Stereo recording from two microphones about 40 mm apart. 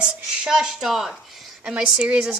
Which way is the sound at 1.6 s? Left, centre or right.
Right.